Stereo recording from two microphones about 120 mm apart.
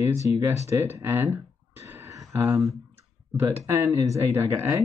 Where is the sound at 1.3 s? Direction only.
20° right (ahead or behind).